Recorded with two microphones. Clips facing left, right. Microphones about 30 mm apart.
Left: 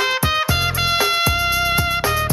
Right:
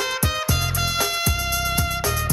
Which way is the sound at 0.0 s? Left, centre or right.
Left.